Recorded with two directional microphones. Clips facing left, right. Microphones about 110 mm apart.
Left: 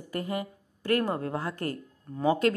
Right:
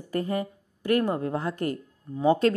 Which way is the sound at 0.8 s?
20° right (ahead or behind).